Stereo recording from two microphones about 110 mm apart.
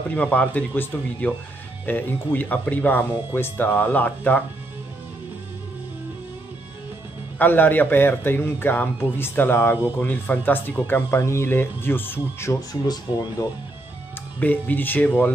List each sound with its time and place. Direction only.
0.1 s speech: 15° left (ahead or behind)
7.3 s a man's voice: 15° left (ahead or behind)
12.8 s speech: 40° left (ahead or behind)
14.4 s speech: 15° left (ahead or behind)